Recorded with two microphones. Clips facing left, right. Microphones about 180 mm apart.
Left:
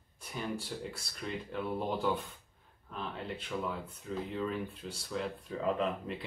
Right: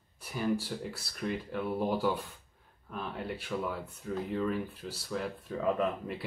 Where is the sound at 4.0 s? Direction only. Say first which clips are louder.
Right 4 dB; 5° right (ahead or behind).